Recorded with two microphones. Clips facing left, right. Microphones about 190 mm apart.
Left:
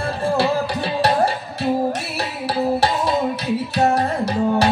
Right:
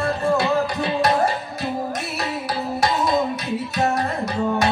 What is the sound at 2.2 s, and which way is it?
Music, 30° left (ahead or behind).